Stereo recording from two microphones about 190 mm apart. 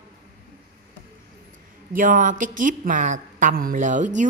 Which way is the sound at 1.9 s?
45° right (ahead or behind).